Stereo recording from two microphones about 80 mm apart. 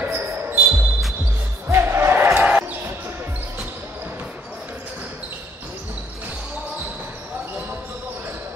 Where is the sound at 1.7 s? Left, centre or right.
Right.